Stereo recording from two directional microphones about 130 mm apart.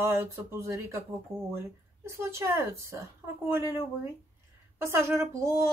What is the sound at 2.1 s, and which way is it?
A woman's voice, 20° right (ahead or behind).